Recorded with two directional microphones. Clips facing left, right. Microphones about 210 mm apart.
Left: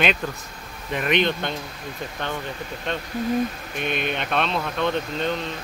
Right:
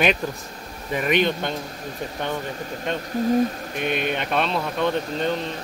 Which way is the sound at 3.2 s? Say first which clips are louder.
Right 4 dB; 40° right (ahead or behind).